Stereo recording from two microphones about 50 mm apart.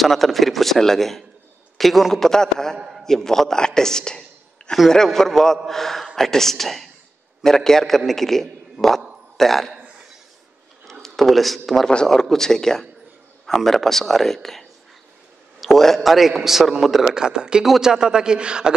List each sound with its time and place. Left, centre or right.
0.0 s a man's voice: centre
10.9 s a man's voice: centre
17.1 s a man's voice: centre